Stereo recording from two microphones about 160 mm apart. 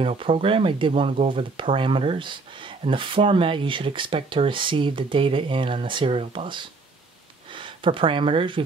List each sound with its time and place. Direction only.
0.0 s speech: 35° right (ahead or behind)